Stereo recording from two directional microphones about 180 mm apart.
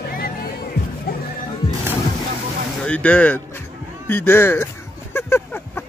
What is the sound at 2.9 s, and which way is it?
Speech, 10° left (ahead or behind).